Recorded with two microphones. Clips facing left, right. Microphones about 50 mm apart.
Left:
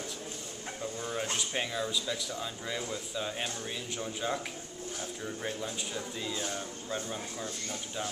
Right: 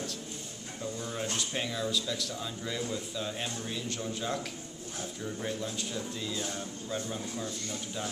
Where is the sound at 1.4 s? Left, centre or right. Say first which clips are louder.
Even; centre.